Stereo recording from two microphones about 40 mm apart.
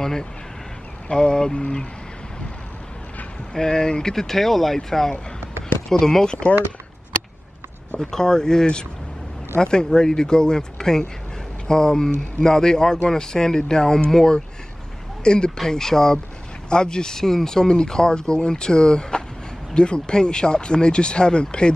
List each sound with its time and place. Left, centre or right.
0.0 s speech: centre
3.5 s speech: centre
8.0 s speech: centre
15.5 s speech: centre